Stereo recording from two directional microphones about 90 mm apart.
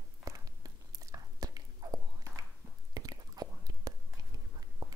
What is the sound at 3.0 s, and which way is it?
Whispering, 45° right (ahead or behind).